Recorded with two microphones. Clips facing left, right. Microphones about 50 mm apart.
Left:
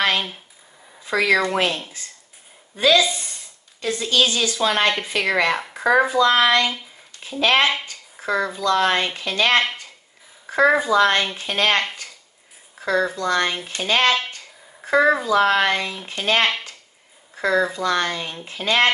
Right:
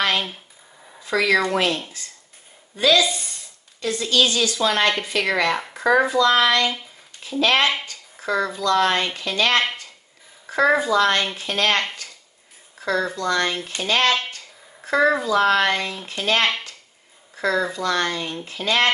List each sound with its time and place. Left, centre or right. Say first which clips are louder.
0.1 s speech: even; centre
1.0 s a woman's voice: left 1 dB; centre
10.8 s a woman's voice: left 1 dB; centre
12.8 s a woman's voice: left 2 dB; centre